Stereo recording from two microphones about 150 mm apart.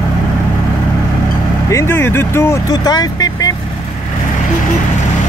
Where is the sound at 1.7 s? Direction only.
15° left (ahead or behind).